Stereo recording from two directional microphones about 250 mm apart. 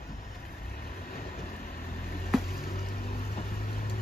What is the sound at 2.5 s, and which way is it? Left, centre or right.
Vehicle, left.